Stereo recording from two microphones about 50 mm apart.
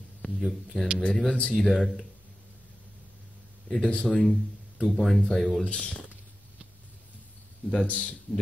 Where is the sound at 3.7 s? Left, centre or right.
Left.